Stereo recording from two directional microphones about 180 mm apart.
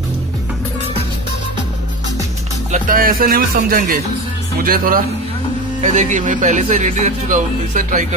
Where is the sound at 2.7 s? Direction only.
50° right (ahead or behind).